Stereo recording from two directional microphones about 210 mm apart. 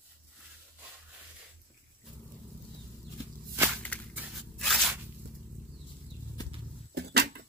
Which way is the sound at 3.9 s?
5° left (ahead or behind).